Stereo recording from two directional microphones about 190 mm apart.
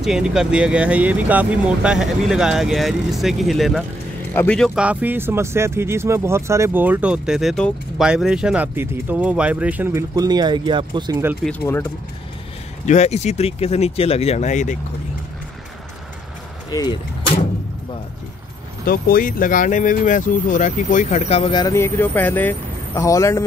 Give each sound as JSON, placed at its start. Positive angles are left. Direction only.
{"t": 0.0, "sound": "speech", "side_deg": -5}
{"t": 11.6, "sound": "speech", "side_deg": 10}
{"t": 12.8, "sound": "speech", "side_deg": 35}
{"t": 16.7, "sound": "speech", "side_deg": 20}
{"t": 18.9, "sound": "speech", "side_deg": 50}